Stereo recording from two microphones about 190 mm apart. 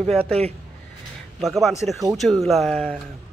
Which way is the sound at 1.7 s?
15° left (ahead or behind).